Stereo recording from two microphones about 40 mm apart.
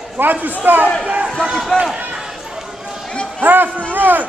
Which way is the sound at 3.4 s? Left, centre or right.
Right.